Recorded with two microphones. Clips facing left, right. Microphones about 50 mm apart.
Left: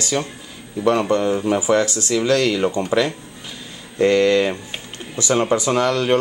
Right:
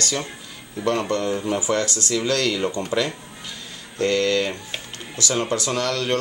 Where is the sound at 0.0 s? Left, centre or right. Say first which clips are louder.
Left 4 dB; centre.